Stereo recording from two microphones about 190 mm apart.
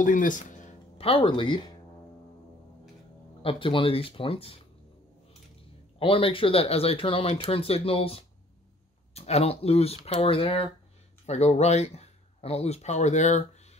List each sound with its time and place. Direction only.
0.0 s speech: 45° left (ahead or behind); by 1.7 s 25° left (ahead or behind)
3.4 s speech: 25° left (ahead or behind)
5.9 s speech: 30° left (ahead or behind)